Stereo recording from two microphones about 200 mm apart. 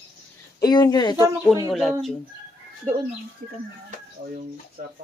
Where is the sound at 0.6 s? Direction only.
20° left (ahead or behind).